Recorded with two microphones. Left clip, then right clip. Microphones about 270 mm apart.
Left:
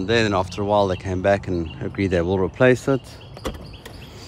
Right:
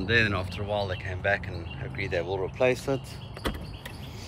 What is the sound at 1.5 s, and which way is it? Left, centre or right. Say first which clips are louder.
Speech: left 12 dB; left.